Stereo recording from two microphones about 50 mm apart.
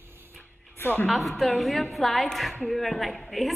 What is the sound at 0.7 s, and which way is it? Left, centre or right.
Speech, left.